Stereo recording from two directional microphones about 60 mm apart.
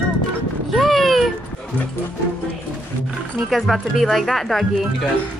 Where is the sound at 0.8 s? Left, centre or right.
Centre.